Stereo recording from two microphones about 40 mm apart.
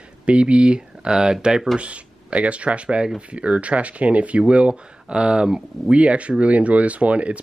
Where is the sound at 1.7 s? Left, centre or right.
Right.